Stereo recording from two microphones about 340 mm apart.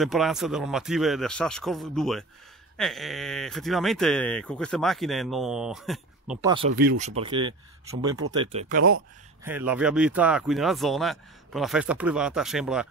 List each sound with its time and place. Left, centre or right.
0.0 s speech: centre
6.7 s speech: right
7.0 s speech: centre
9.4 s speech: centre